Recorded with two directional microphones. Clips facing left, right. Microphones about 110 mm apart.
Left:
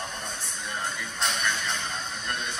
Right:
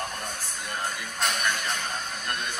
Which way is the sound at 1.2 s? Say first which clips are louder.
Right 1 dB; 25° left (ahead or behind).